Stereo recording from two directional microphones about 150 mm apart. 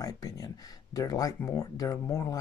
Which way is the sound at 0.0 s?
25° left (ahead or behind).